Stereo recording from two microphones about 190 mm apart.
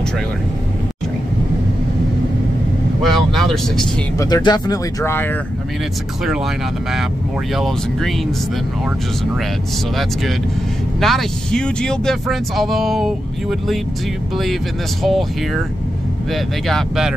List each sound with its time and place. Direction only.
3.0 s vehicle: centre (ahead or behind)
4.2 s speech: 20° left (ahead or behind)
6.2 s speech: centre (ahead or behind)
11.0 s speech: centre (ahead or behind)
15.0 s speech: centre (ahead or behind)